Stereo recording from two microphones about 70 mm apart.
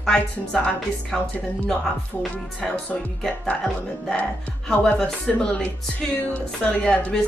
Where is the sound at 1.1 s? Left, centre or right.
Centre.